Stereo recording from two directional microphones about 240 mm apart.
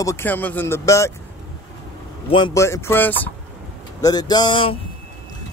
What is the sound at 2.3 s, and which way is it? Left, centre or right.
Speech, centre.